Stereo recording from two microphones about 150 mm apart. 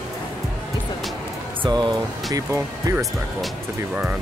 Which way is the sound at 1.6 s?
30° right (ahead or behind).